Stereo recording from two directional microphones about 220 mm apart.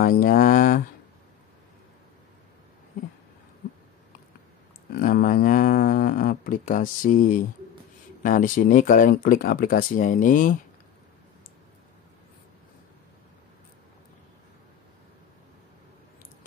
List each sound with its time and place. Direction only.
0.0 s speech: 40° left (ahead or behind)
4.9 s speech: 40° left (ahead or behind)